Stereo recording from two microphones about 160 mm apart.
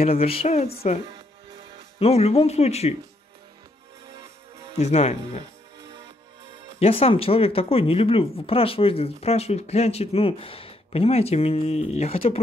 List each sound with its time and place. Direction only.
0.0 s speech: 40° left (ahead or behind)
2.0 s speech: 40° left (ahead or behind)
4.7 s speech: 40° left (ahead or behind)
6.8 s speech: 35° left (ahead or behind)